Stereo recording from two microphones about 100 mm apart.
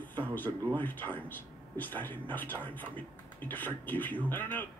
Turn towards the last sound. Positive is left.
turn(degrees=20)  # may be behind; listen again after turning